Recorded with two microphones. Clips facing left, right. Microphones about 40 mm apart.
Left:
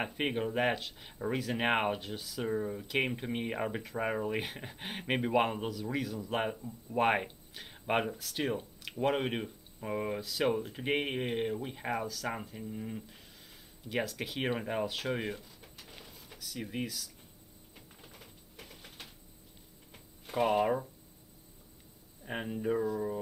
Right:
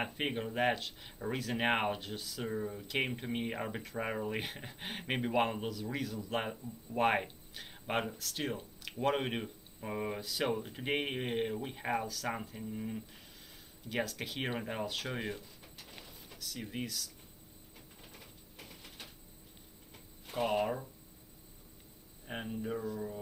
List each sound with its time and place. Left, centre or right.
0.0 s speech: centre
8.8 s speech: centre
22.2 s speech: centre